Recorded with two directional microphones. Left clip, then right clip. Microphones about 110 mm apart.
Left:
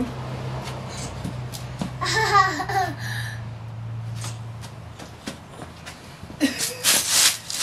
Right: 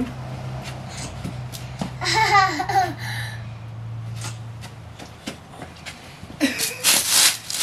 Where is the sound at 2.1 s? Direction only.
20° right (ahead or behind).